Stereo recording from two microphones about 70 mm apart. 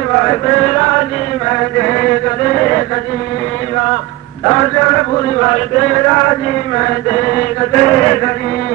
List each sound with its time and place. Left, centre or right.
0.2 s a man's voice: centre
1.5 s chant: centre
4.5 s a man's voice: centre